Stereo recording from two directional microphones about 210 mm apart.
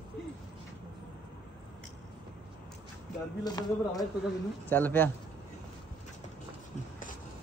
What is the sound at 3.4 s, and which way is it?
A man's voice, 20° left (ahead or behind).